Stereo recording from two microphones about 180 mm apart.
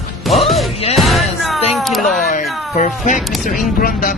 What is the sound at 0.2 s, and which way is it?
Music, centre (ahead or behind).